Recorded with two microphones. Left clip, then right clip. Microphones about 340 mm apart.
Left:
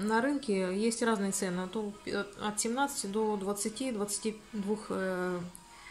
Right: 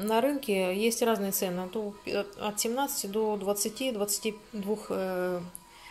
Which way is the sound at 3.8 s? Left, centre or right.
Centre.